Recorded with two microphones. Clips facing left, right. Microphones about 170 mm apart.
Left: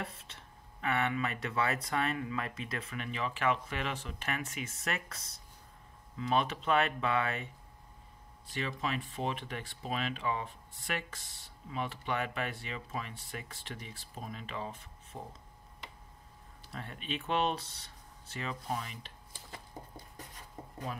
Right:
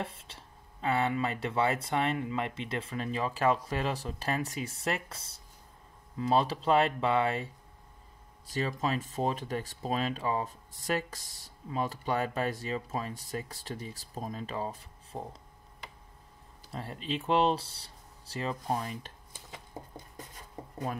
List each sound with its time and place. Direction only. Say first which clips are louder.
0.0 s speech: right 4 dB; 30° right (ahead or behind)
8.5 s speech: right 5 dB; 40° right (ahead or behind)
16.7 s speech: right 4 dB; 30° right (ahead or behind)